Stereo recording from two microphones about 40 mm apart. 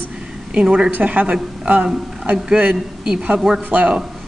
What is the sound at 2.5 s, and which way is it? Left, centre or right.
Speech, right.